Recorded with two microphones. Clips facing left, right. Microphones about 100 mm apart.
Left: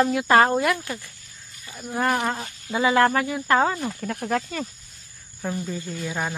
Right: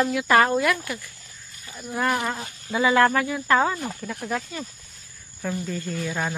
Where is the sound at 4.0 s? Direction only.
50° left (ahead or behind).